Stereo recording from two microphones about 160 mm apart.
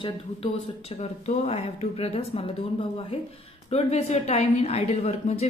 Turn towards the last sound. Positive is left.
turn(degrees=40)  # may be behind; listen again after turning